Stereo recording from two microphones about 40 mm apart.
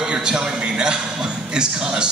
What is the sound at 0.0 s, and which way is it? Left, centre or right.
A man's voice, centre.